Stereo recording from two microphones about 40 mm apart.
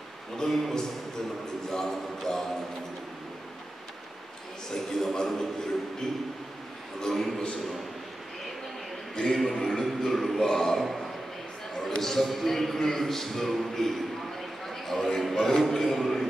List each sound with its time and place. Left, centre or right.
0.4 s speech: centre
4.9 s speech: centre
7.0 s speech: centre
9.1 s speech: centre
9.4 s a man's voice: centre
12.0 s speech: centre
14.7 s a sound: centre
15.3 s a man's voice: centre